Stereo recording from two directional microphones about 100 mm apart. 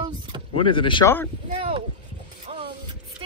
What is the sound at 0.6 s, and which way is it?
Speech, 60° left (ahead or behind).